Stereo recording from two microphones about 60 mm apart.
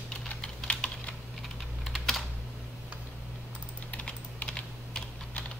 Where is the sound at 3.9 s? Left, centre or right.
Left.